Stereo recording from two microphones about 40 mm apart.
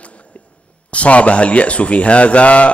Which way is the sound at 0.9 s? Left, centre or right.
Left.